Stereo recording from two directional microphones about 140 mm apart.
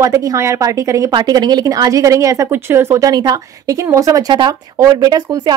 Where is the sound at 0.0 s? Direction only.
25° right (ahead or behind).